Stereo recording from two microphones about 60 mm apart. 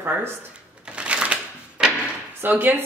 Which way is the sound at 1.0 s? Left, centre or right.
Centre.